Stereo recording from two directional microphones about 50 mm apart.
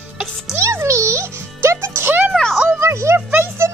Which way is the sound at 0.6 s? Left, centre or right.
Right.